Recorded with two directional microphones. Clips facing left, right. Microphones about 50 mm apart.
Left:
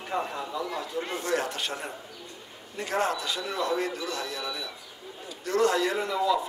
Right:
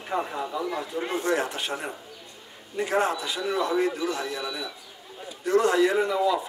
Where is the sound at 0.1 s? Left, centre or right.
Centre.